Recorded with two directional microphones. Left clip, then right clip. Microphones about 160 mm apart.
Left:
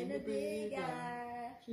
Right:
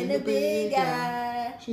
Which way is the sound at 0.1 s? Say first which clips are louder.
Right 16 dB; 15° right (ahead or behind).